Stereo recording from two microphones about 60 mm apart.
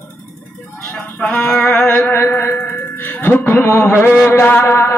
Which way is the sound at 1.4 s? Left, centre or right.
Centre.